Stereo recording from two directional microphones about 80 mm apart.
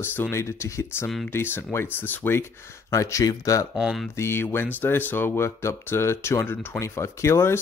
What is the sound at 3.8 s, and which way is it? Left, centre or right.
Speech, centre.